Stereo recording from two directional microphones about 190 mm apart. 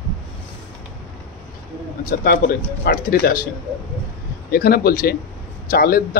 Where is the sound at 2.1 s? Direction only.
50° left (ahead or behind).